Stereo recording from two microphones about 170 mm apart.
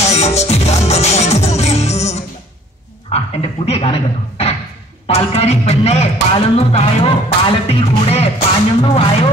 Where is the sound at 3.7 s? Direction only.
35° left (ahead or behind).